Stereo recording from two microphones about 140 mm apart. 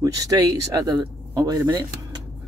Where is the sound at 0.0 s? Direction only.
25° right (ahead or behind).